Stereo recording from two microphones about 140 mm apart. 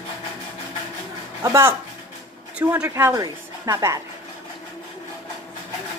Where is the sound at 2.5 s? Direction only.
10° right (ahead or behind).